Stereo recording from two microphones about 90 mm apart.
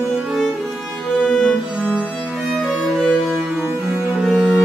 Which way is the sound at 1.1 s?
5° right (ahead or behind).